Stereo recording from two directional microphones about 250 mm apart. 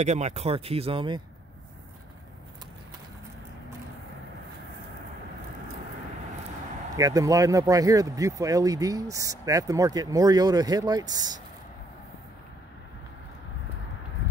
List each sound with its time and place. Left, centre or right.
0.0 s speech: right
7.0 s speech: centre